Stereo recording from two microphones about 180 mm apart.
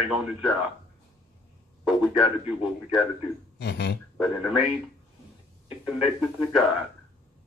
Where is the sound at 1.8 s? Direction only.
Centre (ahead or behind).